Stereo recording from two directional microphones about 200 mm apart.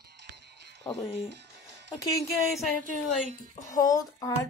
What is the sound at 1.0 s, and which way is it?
Speech, 30° left (ahead or behind).